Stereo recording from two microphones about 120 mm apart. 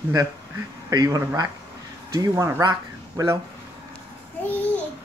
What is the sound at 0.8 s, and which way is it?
A man's voice, 30° right (ahead or behind).